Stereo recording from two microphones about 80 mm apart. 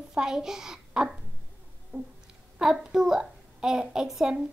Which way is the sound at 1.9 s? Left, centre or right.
Right.